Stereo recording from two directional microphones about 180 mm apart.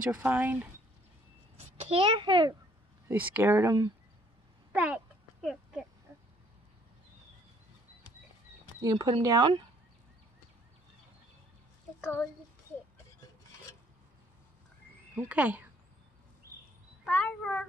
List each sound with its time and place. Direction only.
0.0 s speech: 10° right (ahead or behind)
1.6 s a child's voice: 35° right (ahead or behind)
3.1 s speech: 10° right (ahead or behind)
4.7 s a sound: 5° right (ahead or behind)
8.8 s speech: 20° right (ahead or behind)
15.1 s speech: 10° right (ahead or behind)
17.0 s a child's voice: 5° left (ahead or behind)